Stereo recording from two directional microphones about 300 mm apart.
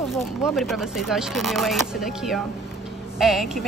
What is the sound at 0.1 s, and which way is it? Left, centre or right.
Speech, centre.